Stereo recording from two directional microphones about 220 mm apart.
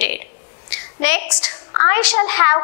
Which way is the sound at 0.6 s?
10° left (ahead or behind).